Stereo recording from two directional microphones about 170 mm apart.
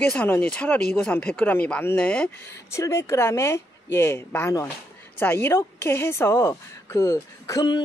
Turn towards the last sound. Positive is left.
turn(degrees=20)  # may be behind; listen again after turning